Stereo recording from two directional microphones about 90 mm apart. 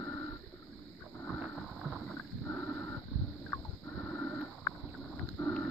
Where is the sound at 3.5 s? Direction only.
15° left (ahead or behind).